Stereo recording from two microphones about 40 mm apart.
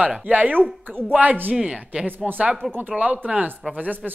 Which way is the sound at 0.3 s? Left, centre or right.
Right.